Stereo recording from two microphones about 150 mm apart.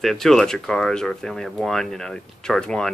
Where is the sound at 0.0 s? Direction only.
5° left (ahead or behind).